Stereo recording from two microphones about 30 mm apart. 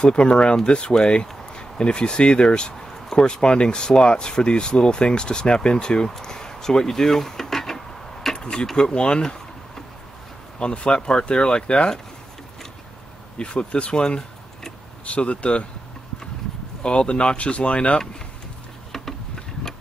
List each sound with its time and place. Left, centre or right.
0.1 s speech: left
2.8 s speech: centre
6.2 s a sound: left
8.4 s speech: left
10.6 s speech: left
13.4 s speech: left
15.0 s speech: left
16.8 s speech: left
17.4 s speech: left
18.9 s a sound: centre